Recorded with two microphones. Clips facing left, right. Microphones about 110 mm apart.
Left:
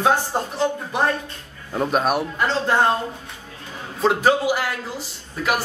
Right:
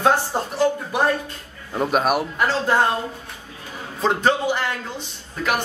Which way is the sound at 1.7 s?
5° right (ahead or behind).